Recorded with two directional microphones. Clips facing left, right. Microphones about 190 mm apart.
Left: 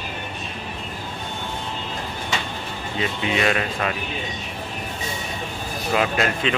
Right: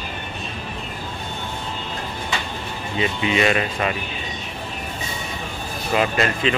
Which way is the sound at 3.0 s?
Centre (ahead or behind).